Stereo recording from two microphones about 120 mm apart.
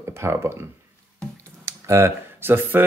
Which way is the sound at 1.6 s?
25° right (ahead or behind).